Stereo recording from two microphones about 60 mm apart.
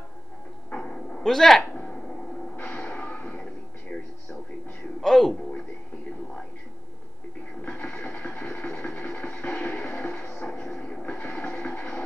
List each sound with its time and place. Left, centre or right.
0.7 s dog: centre
1.2 s speech: centre
1.8 s a sound: centre
2.6 s music: left
3.9 s television: centre
5.0 s speech: centre
7.6 s a sound: left
10.6 s television: left
11.4 s music: left